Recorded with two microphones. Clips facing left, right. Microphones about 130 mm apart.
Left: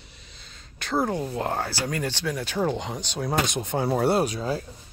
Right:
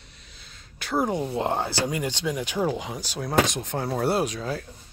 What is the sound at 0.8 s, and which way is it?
Speech, 10° right (ahead or behind).